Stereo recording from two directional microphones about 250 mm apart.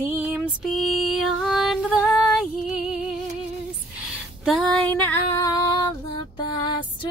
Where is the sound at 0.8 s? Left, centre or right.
Left.